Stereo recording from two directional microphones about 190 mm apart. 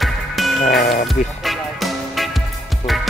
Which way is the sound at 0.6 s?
45° left (ahead or behind).